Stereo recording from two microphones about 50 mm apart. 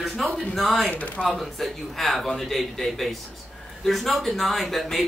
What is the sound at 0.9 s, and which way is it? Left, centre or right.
Speech, left.